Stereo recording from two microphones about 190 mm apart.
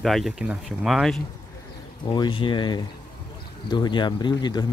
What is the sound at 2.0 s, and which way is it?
Speech, 20° left (ahead or behind).